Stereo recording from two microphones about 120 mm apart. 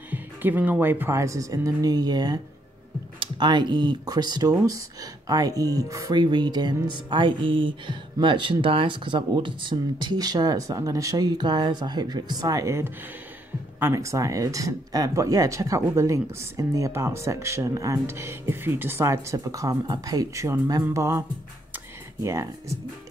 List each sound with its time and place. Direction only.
0.1 s speech: 15° right (ahead or behind)
22.2 s speech: 25° right (ahead or behind)